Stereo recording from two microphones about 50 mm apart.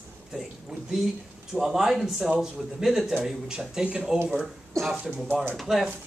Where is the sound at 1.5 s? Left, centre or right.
Centre.